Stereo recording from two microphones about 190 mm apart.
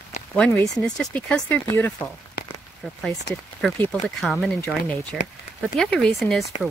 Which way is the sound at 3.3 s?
65° left (ahead or behind).